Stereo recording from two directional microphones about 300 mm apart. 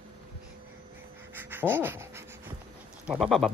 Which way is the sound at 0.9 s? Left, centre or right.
Centre.